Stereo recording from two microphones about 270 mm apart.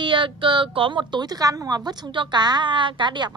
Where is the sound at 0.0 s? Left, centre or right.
Centre.